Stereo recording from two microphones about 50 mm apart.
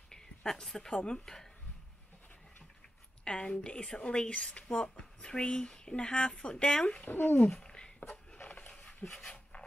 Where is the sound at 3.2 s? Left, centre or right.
Centre.